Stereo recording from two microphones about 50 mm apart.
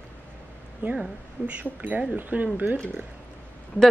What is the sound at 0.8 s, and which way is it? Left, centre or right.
Speech, right.